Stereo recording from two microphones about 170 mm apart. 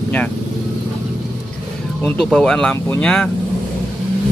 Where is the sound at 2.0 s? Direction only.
Centre (ahead or behind).